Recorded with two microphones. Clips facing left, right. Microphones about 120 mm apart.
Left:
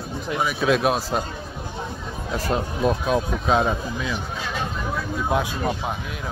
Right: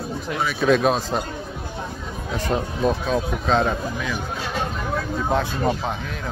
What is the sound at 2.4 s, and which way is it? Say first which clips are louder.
Speech: right 1 dB; 5° left (ahead or behind).